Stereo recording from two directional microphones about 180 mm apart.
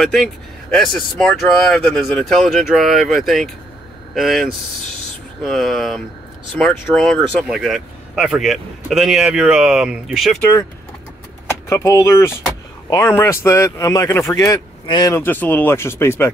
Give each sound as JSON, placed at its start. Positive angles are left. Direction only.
{"t": 0.0, "sound": "speech", "side_deg": 0}
{"t": 11.7, "sound": "speech", "side_deg": 15}